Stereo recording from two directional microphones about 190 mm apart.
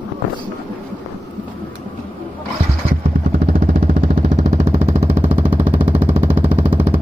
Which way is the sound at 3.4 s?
50° right (ahead or behind).